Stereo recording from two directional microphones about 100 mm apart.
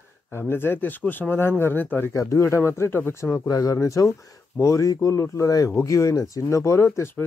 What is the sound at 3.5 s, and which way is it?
Speech, 35° left (ahead or behind).